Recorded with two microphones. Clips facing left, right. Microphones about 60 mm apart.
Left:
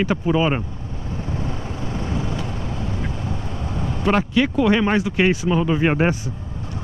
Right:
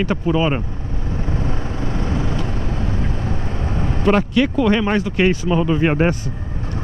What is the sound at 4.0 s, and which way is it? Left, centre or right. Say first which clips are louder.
Speech: right 2 dB; centre.